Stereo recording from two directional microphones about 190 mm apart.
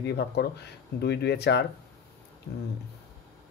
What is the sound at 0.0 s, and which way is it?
Speech, 60° left (ahead or behind).